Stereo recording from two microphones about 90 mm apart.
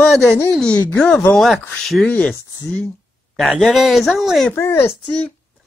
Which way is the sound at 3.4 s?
5° left (ahead or behind).